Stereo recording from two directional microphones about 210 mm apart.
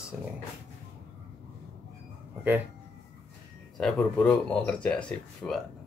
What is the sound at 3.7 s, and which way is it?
Speech, centre (ahead or behind).